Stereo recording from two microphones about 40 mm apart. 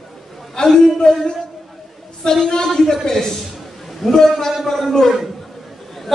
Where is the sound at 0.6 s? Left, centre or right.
Centre.